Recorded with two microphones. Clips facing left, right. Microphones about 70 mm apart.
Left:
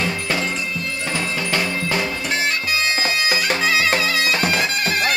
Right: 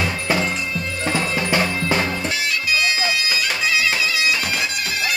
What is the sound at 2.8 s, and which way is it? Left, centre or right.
Bagpipes, left.